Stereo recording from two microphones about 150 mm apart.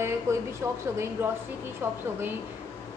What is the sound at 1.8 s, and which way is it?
Speech, 15° right (ahead or behind).